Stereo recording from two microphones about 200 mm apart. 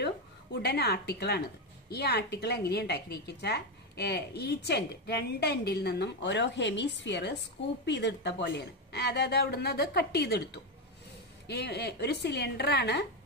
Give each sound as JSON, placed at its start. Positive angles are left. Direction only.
{"t": 0.0, "sound": "speech", "side_deg": 55}